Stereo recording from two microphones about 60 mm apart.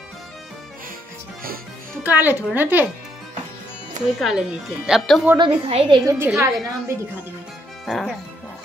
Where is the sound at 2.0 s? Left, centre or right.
Right.